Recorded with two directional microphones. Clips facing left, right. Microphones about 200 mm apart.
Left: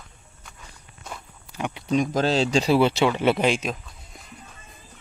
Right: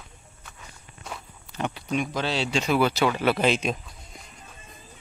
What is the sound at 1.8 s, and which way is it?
Speech, 40° left (ahead or behind).